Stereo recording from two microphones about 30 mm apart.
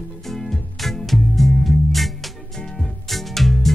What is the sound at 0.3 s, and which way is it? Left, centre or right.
Music, centre.